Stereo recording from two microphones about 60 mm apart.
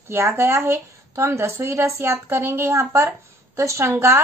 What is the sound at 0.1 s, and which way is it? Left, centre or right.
A woman's voice, right.